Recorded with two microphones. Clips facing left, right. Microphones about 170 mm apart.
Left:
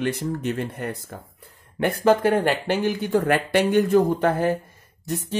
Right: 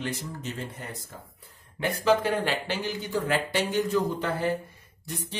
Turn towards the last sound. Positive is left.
turn(degrees=45)  # may be behind; listen again after turning